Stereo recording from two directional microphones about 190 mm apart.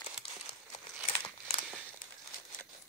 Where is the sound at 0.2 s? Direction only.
30° left (ahead or behind).